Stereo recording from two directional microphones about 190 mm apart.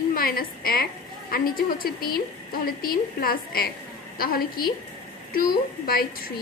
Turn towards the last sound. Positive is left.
turn(degrees=50)  # may be behind; listen again after turning